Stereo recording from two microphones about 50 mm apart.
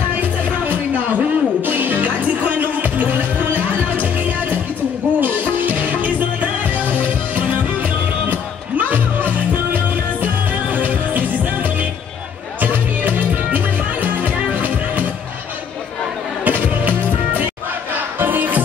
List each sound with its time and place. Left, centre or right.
0.1 s music: right
8.3 s music: right
12.5 s music: right
16.4 s music: right